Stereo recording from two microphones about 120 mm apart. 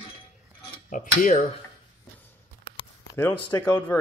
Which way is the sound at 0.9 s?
90° left.